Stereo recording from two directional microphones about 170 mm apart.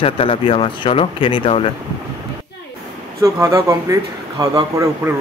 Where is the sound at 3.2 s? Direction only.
20° right (ahead or behind).